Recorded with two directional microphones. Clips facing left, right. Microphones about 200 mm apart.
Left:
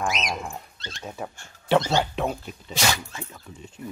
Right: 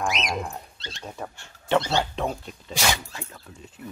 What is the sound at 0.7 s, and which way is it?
Speech, 50° left (ahead or behind).